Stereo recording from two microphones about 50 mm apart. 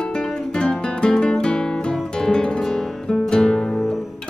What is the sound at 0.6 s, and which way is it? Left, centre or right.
Guitar, centre.